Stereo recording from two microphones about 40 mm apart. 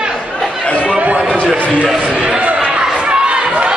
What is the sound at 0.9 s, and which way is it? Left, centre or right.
Chatter, right.